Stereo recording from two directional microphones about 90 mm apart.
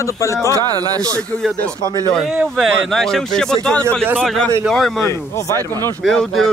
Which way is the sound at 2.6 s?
5° left (ahead or behind).